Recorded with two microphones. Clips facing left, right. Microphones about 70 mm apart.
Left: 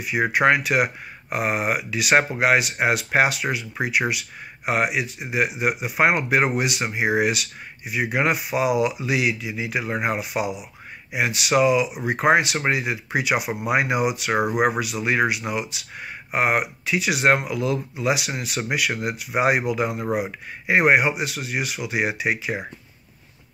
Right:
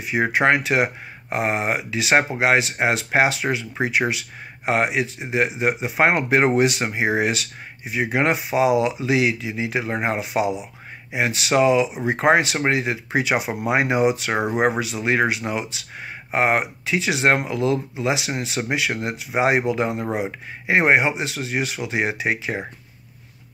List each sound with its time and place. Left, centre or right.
0.0 s speech: right
4.6 s speech: right